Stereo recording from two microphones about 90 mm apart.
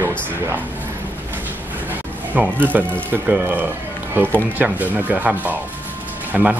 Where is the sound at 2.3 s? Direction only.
20° right (ahead or behind).